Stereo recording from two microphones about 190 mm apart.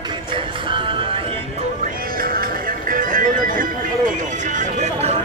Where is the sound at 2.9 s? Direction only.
45° right (ahead or behind).